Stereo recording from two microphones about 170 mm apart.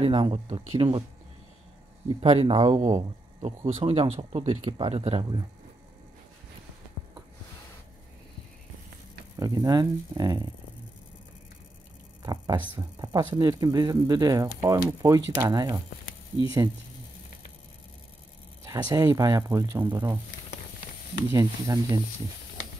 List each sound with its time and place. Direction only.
0.0 s speech: 30° right (ahead or behind)
2.1 s speech: 35° right (ahead or behind)
9.4 s speech: 20° right (ahead or behind)
12.2 s speech: 25° right (ahead or behind)
18.6 s speech: 20° right (ahead or behind)
21.3 s speech: 20° right (ahead or behind)